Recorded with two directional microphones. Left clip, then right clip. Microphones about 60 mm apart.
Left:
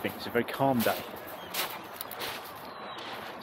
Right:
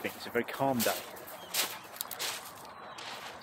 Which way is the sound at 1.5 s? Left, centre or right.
Right.